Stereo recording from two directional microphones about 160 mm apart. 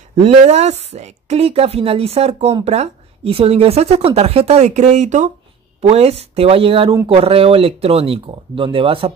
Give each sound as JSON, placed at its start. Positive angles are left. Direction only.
{"t": 0.1, "sound": "a woman's voice", "side_deg": -40}